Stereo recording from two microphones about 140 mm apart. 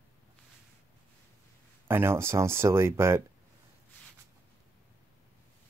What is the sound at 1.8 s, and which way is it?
Speech, 15° right (ahead or behind).